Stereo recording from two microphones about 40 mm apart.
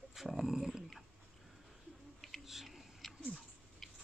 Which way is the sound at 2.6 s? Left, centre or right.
Centre.